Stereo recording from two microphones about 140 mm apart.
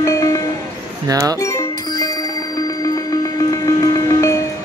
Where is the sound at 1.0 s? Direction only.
25° right (ahead or behind).